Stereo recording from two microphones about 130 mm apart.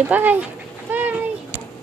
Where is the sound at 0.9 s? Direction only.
15° right (ahead or behind).